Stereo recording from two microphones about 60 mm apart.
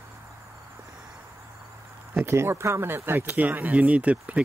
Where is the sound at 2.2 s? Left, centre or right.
Right.